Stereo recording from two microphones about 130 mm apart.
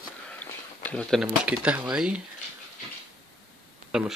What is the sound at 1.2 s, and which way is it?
Speech, 10° right (ahead or behind).